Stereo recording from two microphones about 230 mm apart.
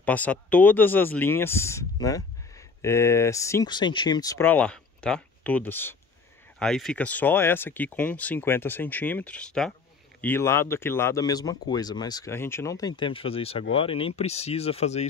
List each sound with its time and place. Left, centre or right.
0.0 s speech: centre; by 15.0 s left